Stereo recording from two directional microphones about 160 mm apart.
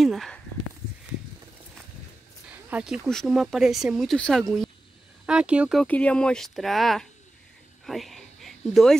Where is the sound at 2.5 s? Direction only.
5° right (ahead or behind).